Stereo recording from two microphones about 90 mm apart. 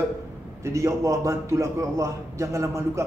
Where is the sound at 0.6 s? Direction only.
35° right (ahead or behind).